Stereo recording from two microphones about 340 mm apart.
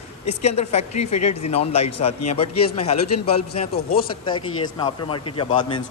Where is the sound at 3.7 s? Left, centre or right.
Left.